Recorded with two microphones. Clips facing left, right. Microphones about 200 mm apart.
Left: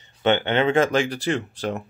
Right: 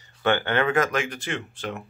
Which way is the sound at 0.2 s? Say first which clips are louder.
Left 3 dB; 20° left (ahead or behind).